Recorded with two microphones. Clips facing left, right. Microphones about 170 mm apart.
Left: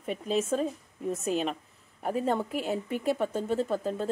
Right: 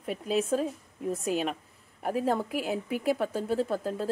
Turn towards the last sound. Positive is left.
turn(degrees=-5)  # may be behind; listen again after turning